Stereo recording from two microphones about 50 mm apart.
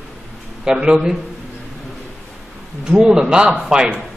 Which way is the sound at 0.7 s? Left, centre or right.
Centre.